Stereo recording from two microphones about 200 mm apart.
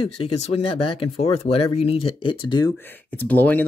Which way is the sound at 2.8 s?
10° left (ahead or behind).